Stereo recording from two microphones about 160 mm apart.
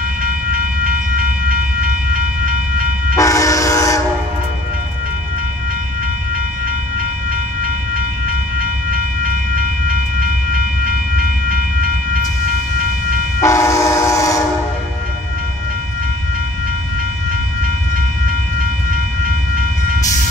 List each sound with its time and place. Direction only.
0.2 s train: 60° right (ahead or behind)
3.2 s train: 20° left (ahead or behind)
13.4 s train: 20° left (ahead or behind)